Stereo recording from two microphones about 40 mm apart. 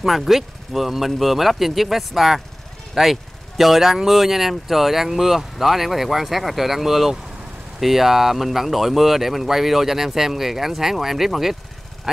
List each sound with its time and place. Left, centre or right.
0.0 s speech: centre